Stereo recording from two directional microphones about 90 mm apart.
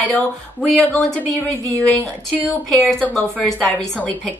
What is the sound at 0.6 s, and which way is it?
Speech, 5° left (ahead or behind).